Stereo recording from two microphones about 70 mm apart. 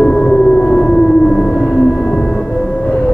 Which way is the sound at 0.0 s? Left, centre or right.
Centre.